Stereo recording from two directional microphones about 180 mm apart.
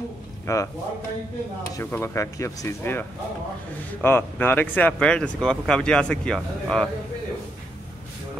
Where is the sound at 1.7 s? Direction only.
15° left (ahead or behind).